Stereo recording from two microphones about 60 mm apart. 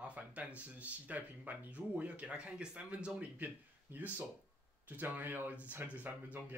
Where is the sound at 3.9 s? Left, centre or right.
Right.